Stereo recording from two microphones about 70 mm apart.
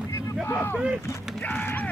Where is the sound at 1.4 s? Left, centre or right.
Left.